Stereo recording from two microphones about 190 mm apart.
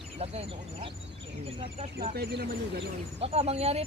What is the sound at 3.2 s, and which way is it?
Speech, 35° right (ahead or behind).